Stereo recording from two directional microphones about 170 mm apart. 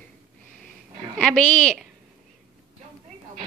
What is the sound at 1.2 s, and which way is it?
Speech, 5° left (ahead or behind).